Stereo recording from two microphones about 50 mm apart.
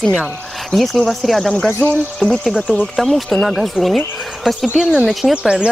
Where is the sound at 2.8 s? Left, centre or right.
Centre.